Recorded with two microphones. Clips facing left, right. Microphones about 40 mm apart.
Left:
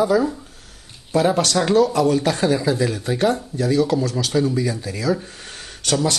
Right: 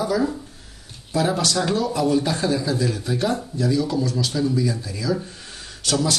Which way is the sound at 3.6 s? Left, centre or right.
Left.